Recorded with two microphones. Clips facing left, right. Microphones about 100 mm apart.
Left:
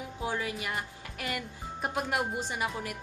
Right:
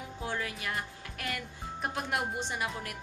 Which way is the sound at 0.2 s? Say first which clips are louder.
Left 3 dB; 5° left (ahead or behind).